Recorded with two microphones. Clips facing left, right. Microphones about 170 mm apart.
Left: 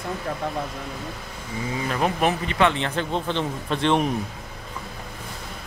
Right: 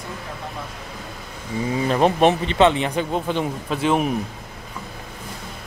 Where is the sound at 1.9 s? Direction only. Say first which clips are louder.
Right 6 dB; 25° right (ahead or behind); by 4.1 s 5° right (ahead or behind).